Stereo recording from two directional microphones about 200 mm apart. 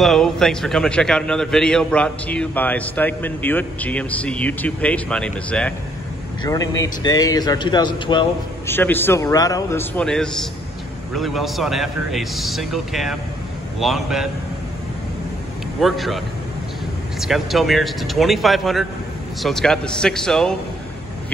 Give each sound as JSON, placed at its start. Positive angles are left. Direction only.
{"t": 0.0, "sound": "a man's voice", "side_deg": 0}
{"t": 6.4, "sound": "a man's voice", "side_deg": 20}
{"t": 8.6, "sound": "a man's voice", "side_deg": 10}
{"t": 15.8, "sound": "a man's voice", "side_deg": 0}
{"t": 17.2, "sound": "a man's voice", "side_deg": 0}